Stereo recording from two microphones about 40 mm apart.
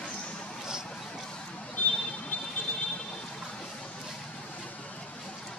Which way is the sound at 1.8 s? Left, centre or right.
Left.